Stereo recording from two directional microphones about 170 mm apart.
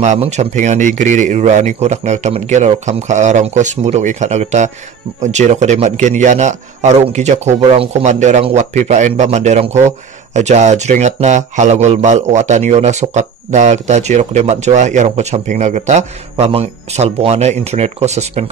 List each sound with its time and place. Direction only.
0.0 s a man's voice: 40° right (ahead or behind)